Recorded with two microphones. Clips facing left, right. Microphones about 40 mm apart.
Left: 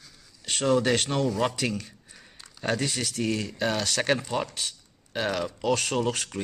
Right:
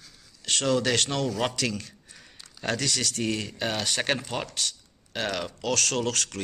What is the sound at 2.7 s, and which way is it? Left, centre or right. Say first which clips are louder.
Speech: even; right.